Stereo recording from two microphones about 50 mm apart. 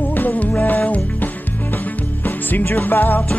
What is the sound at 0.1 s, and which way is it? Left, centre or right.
Music, left.